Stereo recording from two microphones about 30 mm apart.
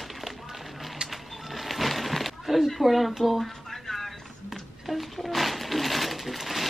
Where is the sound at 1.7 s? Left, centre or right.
Centre.